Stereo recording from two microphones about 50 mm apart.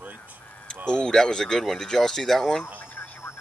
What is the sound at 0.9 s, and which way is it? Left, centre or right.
Speech, centre.